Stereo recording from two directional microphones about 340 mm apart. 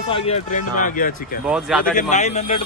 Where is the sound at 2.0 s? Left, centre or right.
Left.